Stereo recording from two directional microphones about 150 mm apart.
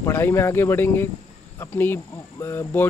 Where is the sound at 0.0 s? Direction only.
15° left (ahead or behind).